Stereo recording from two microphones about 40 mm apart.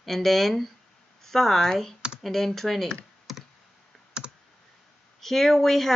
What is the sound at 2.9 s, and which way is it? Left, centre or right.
Computer keyboard, centre.